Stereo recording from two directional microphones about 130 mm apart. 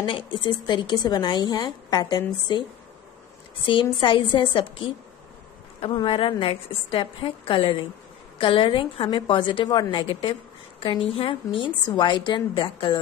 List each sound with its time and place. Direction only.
0.0 s speech: 40° left (ahead or behind)
3.6 s a woman's voice: 40° left (ahead or behind)